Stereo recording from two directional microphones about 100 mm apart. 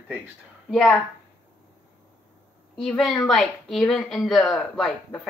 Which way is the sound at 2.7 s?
Centre (ahead or behind).